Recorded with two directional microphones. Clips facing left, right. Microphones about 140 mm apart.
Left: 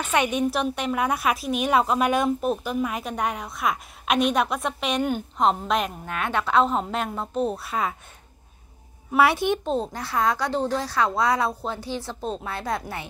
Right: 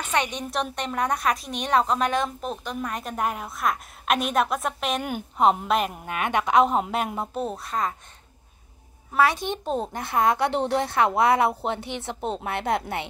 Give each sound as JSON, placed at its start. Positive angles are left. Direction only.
{"t": 0.1, "sound": "a woman's voice", "side_deg": 10}
{"t": 7.4, "sound": "a woman's voice", "side_deg": 5}
{"t": 9.1, "sound": "a woman's voice", "side_deg": 10}
{"t": 9.9, "sound": "speech", "side_deg": -20}